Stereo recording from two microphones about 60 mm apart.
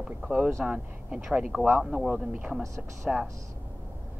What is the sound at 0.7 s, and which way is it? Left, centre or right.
Speech, centre.